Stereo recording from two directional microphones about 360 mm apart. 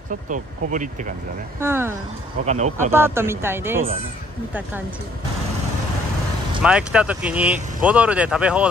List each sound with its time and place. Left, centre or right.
0.3 s speech: right
1.6 s speech: centre
2.4 s speech: centre
2.9 s speech: centre
6.6 s speech: centre